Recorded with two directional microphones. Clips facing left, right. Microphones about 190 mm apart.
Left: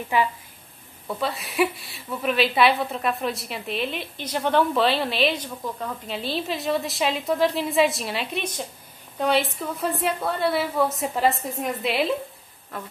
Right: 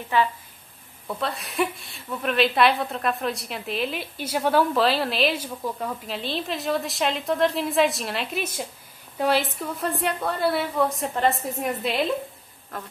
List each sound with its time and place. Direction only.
0.1 s a woman's voice: 10° left (ahead or behind)
1.0 s a woman's voice: centre (ahead or behind)